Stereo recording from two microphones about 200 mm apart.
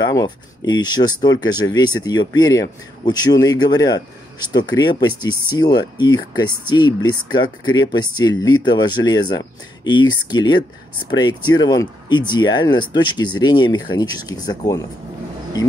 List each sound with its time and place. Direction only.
0.0 s speech: 20° left (ahead or behind)